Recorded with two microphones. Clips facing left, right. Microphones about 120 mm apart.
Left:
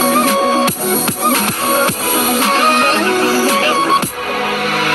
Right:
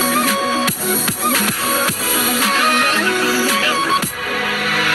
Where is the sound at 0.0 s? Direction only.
35° left (ahead or behind).